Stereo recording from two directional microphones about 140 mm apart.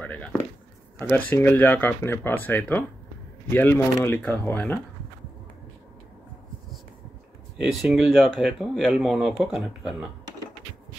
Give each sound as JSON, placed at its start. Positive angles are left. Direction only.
{"t": 0.0, "sound": "speech", "side_deg": 10}
{"t": 7.6, "sound": "speech", "side_deg": 0}